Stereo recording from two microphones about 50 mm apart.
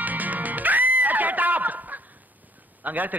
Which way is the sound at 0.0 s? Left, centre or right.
Right.